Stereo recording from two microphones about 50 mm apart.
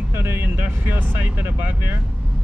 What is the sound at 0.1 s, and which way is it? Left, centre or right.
Speech, right.